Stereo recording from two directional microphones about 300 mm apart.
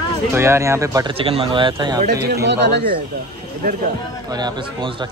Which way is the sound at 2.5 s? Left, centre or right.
Right.